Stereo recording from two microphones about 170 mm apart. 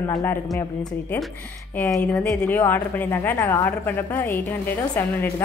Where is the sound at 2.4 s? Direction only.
10° left (ahead or behind).